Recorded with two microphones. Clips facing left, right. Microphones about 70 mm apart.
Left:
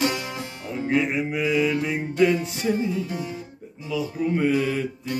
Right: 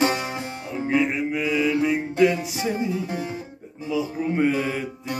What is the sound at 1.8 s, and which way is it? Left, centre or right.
Music, centre.